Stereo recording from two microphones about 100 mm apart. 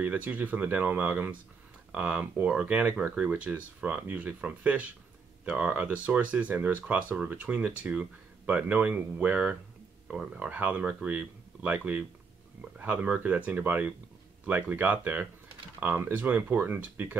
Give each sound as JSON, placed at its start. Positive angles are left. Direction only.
{"t": 0.0, "sound": "speech", "side_deg": -15}